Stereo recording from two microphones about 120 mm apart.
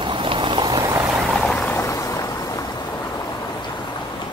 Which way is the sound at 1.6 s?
25° left (ahead or behind).